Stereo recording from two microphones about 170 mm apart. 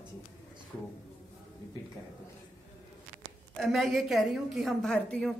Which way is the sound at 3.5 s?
Centre (ahead or behind).